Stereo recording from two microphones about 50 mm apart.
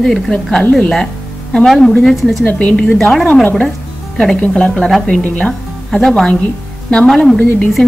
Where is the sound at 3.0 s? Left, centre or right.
Centre.